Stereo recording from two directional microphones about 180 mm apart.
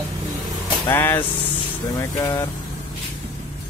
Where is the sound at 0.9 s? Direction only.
15° left (ahead or behind).